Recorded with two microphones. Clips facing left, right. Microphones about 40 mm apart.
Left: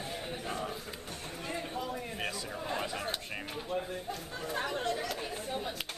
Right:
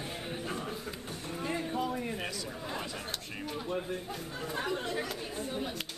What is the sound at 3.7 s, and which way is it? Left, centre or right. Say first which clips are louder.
Speech: left 1 dB; centre.